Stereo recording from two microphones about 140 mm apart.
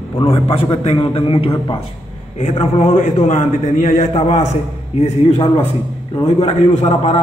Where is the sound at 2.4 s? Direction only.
50° left (ahead or behind).